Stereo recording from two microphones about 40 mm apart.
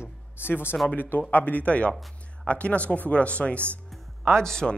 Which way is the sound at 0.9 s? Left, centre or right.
Left.